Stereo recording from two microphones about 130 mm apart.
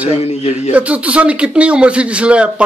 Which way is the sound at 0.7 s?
10° right (ahead or behind).